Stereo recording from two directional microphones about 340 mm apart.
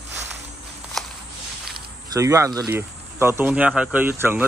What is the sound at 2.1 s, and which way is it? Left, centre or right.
Speech, centre.